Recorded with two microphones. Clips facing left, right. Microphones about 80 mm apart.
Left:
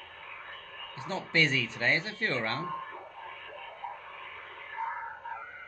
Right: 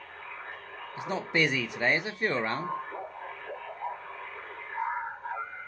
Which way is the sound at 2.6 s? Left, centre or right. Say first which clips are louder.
Right 3 dB; right.